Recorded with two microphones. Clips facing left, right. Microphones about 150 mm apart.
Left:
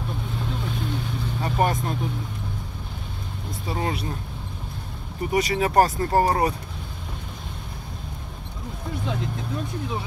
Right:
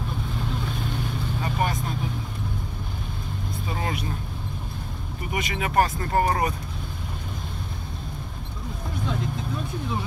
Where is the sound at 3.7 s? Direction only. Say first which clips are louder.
Left 3 dB; 30° left (ahead or behind).